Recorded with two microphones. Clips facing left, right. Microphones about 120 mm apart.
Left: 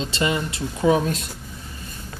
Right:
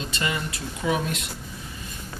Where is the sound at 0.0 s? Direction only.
25° left (ahead or behind).